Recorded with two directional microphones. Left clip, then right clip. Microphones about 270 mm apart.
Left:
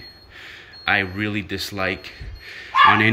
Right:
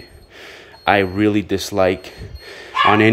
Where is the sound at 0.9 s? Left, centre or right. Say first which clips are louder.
Right 6 dB; centre.